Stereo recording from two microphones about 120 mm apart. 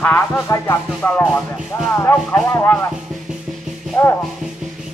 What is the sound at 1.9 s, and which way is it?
Speech, 15° left (ahead or behind).